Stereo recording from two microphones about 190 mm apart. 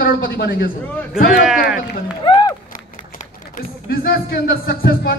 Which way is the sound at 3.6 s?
50° left (ahead or behind).